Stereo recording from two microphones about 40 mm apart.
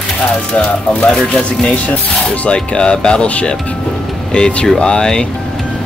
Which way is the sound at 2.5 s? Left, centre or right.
Left.